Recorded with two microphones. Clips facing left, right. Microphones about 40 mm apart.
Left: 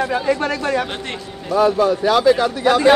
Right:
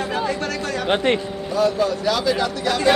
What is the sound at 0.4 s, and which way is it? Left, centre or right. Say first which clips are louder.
Speech: left 5 dB; left.